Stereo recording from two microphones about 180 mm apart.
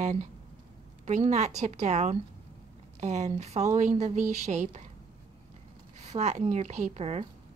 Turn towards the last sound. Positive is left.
turn(degrees=-35)  # may be behind; listen again after turning